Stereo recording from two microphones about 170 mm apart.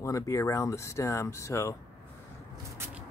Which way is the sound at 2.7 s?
10° right (ahead or behind).